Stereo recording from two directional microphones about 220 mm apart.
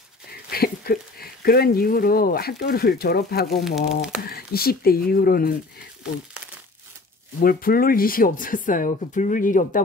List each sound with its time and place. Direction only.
0.5 s speech: 45° left (ahead or behind)
3.6 s speech: centre (ahead or behind)
4.2 s speech: 45° left (ahead or behind)
7.4 s speech: 40° left (ahead or behind)